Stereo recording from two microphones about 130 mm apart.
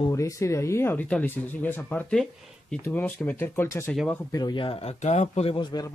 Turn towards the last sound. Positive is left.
turn(degrees=35)  # may be behind; listen again after turning